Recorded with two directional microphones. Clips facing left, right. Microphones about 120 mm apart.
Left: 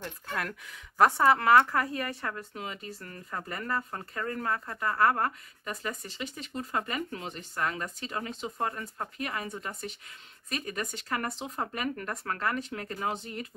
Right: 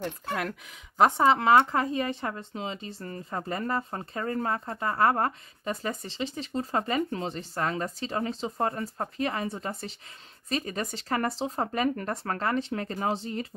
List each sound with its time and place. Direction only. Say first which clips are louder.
0.4 s speech: right 3 dB; 20° right (ahead or behind)